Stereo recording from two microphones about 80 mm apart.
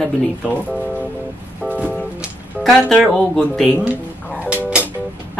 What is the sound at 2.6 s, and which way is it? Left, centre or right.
Speech, centre.